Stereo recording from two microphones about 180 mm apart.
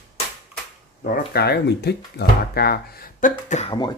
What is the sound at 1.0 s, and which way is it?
Speech, 60° left (ahead or behind).